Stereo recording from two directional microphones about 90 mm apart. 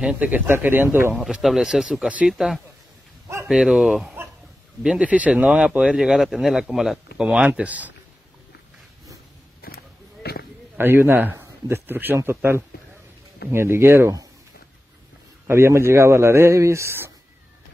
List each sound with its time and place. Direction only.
0.0 s speech: 15° right (ahead or behind)
1.1 s speech: 5° right (ahead or behind)
10.8 s speech: 25° right (ahead or behind)
15.4 s speech: 30° right (ahead or behind)